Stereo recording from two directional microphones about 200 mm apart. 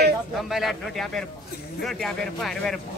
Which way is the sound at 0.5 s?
Centre (ahead or behind).